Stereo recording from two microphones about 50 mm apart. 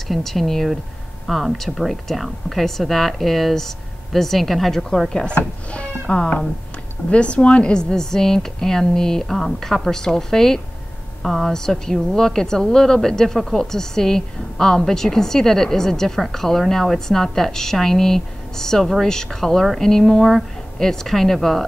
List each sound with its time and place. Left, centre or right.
0.1 s speech: centre
5.1 s a woman's voice: centre